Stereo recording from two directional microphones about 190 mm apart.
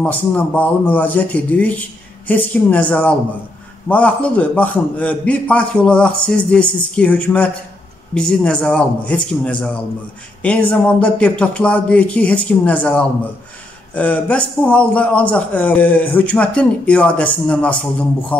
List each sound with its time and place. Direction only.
0.0 s a man's voice: 10° left (ahead or behind)